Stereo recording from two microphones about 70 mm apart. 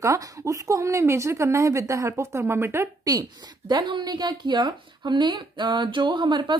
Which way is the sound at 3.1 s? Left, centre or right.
Right.